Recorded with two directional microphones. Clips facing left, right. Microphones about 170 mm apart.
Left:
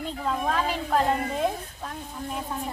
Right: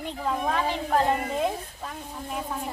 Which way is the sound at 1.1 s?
5° right (ahead or behind).